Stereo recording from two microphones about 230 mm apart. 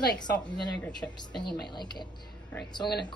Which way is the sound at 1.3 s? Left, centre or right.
Centre.